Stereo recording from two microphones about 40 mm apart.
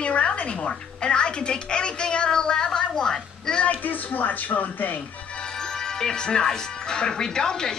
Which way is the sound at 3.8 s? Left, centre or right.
Left.